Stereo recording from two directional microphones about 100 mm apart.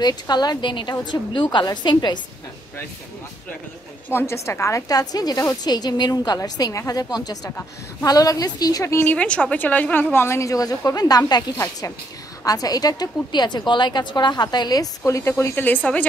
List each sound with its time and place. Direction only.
0.0 s a woman's voice: 45° left (ahead or behind)
4.1 s a woman's voice: 25° left (ahead or behind)
8.9 s a woman's voice: 15° left (ahead or behind)
10.1 s a woman's voice: 25° left (ahead or behind)